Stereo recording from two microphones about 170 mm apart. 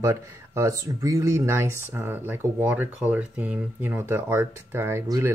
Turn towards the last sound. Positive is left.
turn(degrees=-15)  # may be behind; listen again after turning